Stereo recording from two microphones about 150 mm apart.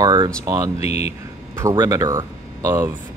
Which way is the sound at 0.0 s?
25° right (ahead or behind).